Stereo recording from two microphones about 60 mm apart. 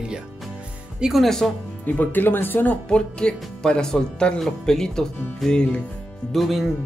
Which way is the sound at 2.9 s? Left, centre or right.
Centre.